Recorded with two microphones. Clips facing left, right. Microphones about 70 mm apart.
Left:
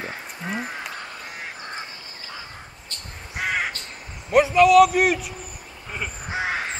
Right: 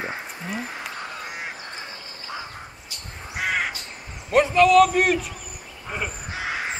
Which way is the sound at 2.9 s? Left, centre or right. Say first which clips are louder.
Even; centre.